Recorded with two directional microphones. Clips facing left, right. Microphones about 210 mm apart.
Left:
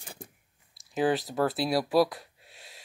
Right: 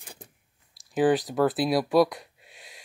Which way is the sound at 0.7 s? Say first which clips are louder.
Right 4 dB; centre (ahead or behind).